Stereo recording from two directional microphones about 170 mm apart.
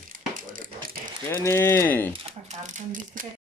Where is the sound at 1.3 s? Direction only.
15° left (ahead or behind).